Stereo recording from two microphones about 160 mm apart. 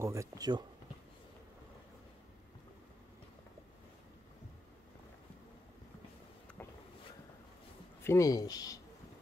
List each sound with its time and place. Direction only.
0.0 s speech: 20° right (ahead or behind)
8.0 s speech: 20° left (ahead or behind)